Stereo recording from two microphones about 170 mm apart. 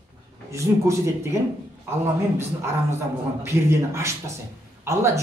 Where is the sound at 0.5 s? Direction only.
15° right (ahead or behind).